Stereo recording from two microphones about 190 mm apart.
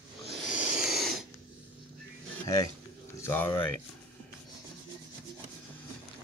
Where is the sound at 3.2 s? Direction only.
10° left (ahead or behind).